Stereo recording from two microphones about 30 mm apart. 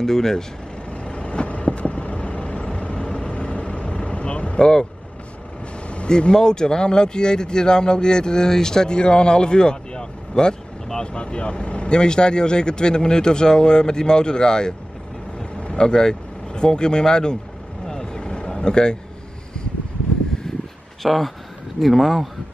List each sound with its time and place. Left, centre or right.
0.0 s speech: centre
1.0 s vehicle: left
6.0 s speech: left
18.0 s vehicle: left
18.5 s speech: left
20.5 s a sound: centre
21.0 s speech: centre